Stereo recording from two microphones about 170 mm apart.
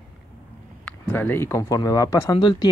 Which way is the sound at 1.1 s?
10° left (ahead or behind).